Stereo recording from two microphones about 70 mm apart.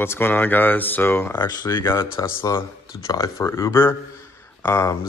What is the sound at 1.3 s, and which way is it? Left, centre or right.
Speech, left.